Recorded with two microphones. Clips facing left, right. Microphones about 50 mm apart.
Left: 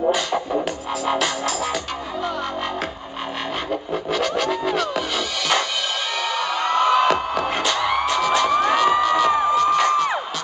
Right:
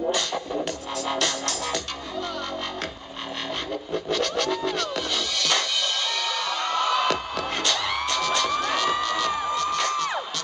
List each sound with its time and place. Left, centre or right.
0.1 s music: centre
3.9 s music: centre
9.3 s crowd: left
9.6 s music: centre